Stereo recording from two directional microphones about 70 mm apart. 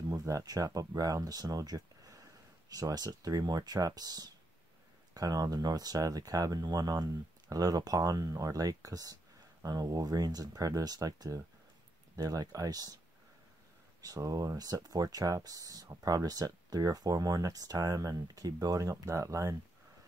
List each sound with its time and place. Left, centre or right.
0.2 s speech: right
14.0 s speech: right